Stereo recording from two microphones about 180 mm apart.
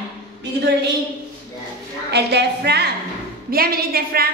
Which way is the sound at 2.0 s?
70° right (ahead or behind).